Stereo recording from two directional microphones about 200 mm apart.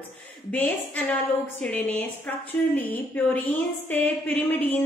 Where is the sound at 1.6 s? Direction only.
5° left (ahead or behind).